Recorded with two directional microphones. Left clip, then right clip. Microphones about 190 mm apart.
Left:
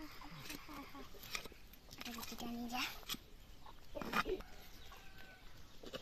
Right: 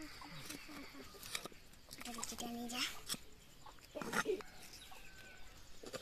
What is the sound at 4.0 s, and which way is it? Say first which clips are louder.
Pig: left 1 dB; 10° left (ahead or behind).